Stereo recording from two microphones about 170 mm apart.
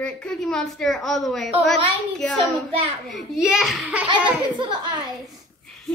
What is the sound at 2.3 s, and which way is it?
Speech, 35° right (ahead or behind).